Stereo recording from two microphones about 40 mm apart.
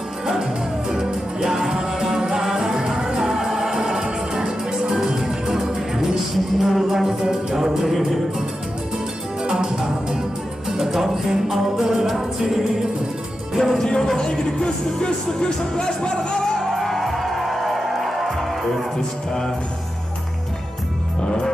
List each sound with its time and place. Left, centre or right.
0.4 s music: centre
9.4 s music: centre
14.0 s music: centre
16.5 s music: centre
18.9 s music: centre
21.2 s music: centre